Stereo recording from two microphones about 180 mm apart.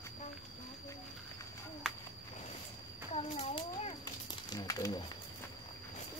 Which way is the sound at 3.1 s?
35° left (ahead or behind).